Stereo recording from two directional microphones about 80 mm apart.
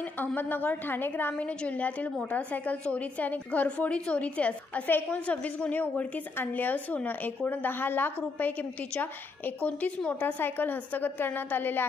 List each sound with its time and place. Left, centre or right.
0.2 s a woman's voice: left